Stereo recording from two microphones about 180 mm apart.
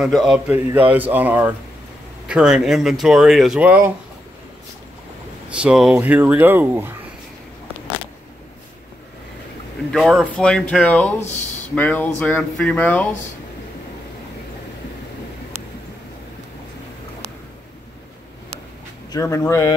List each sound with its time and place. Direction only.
0.0 s speech: centre (ahead or behind)
5.5 s speech: 5° right (ahead or behind)
9.9 s speech: centre (ahead or behind)
19.1 s speech: 15° left (ahead or behind)